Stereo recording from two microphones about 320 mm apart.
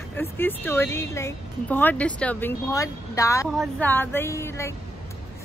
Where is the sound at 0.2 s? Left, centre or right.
Centre.